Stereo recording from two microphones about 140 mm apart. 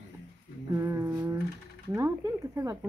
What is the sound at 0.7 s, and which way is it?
Speech, 20° right (ahead or behind).